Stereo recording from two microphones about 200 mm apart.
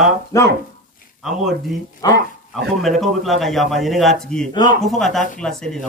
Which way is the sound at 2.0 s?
20° left (ahead or behind).